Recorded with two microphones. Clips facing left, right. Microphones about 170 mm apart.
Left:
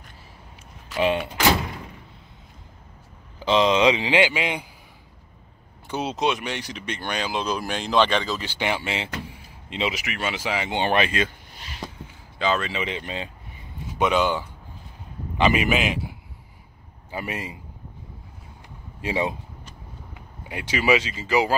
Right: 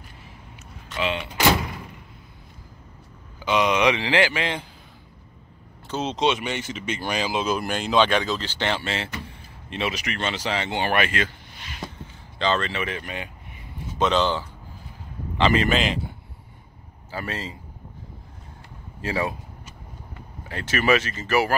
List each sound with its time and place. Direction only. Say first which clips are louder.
0.9 s speech: left 5 dB; 45° left (ahead or behind)
3.3 s a man's voice: left 2 dB; 30° left (ahead or behind)
5.9 s speech: even; 15° left (ahead or behind)
6.1 s speech: right 3 dB; centre (ahead or behind)
8.4 s speech: even; 10° left (ahead or behind)
9.3 s a sound: right 1 dB; 15° left (ahead or behind)
10.0 s speech: right 1 dB; 5° left (ahead or behind)
10.7 s a man's voice: left 2 dB; 20° left (ahead or behind)
11.5 s a sound: even; 35° left (ahead or behind)
12.4 s speech: even; 5° left (ahead or behind); by 13.3 s 25° left (ahead or behind)
13.9 s speech: even; 10° left (ahead or behind)
17.1 s speech: even; 15° left (ahead or behind)
18.9 s speech: left 1 dB; 20° left (ahead or behind)